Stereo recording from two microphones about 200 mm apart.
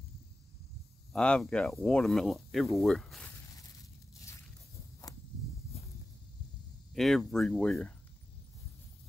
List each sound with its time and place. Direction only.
1.1 s speech: 5° left (ahead or behind)
5.7 s a sound: 30° left (ahead or behind)
6.9 s speech: centre (ahead or behind)